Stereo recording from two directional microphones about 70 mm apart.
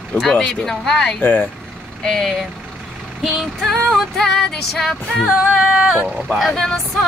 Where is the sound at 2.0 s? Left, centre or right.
Centre.